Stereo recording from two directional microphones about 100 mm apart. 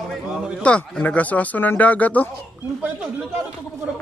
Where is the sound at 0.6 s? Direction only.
10° left (ahead or behind).